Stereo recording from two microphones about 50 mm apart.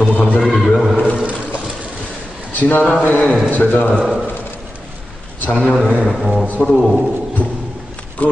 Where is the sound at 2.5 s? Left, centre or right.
Left.